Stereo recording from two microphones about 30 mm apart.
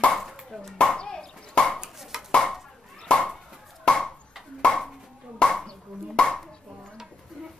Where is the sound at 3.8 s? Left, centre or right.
Left.